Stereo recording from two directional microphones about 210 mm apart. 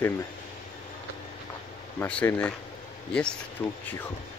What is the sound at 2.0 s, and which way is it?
Speech, 10° left (ahead or behind).